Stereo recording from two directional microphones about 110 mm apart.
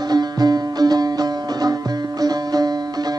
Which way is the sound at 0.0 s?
40° right (ahead or behind).